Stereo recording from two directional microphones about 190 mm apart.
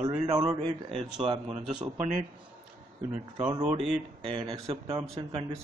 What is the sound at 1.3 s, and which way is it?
Speech, 30° right (ahead or behind).